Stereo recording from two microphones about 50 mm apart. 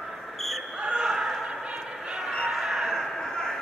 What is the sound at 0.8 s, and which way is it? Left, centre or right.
Basketball bounce, centre.